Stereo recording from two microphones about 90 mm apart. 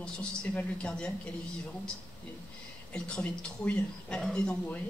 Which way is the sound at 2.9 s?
10° left (ahead or behind).